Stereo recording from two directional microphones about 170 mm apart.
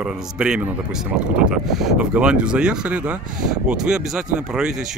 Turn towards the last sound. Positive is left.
turn(degrees=-5)  # may be behind; listen again after turning